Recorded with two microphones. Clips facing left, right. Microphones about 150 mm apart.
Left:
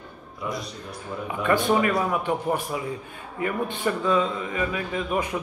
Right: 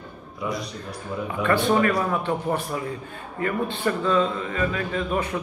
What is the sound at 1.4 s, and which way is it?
Speech, 15° left (ahead or behind).